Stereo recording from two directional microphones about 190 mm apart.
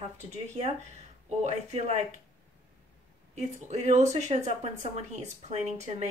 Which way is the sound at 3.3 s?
35° right (ahead or behind).